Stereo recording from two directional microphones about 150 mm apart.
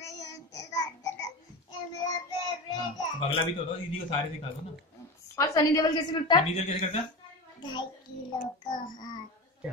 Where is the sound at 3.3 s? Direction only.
35° left (ahead or behind).